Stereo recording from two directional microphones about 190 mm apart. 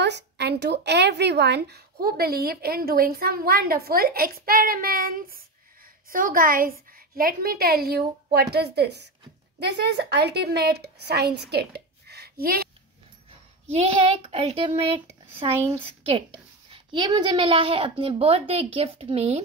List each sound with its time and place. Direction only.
0.0 s a woman's voice: 65° right (ahead or behind)
13.7 s a child's voice: 30° right (ahead or behind)
16.7 s a woman's voice: 25° right (ahead or behind)